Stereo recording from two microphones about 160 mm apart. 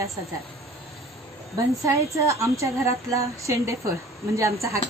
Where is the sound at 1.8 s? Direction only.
20° right (ahead or behind).